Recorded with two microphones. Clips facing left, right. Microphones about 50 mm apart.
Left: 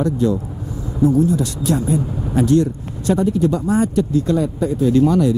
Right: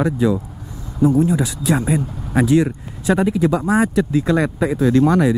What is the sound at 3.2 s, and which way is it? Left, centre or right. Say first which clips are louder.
Speech: even; right.